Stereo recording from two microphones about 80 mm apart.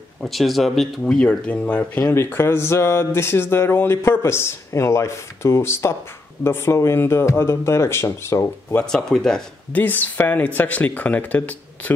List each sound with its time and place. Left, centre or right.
0.2 s speech: centre
2.2 s a sound: left
8.9 s speech: centre
9.7 s speech: left